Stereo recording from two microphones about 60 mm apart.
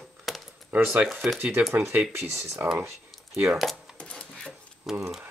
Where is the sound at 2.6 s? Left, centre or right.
Right.